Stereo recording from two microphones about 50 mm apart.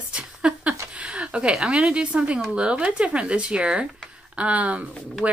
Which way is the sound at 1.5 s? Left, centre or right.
Centre.